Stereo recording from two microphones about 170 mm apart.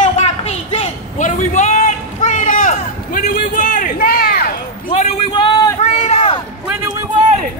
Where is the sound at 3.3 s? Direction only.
50° left (ahead or behind).